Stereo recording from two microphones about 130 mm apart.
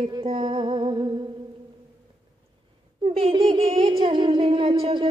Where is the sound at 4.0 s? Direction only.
40° right (ahead or behind).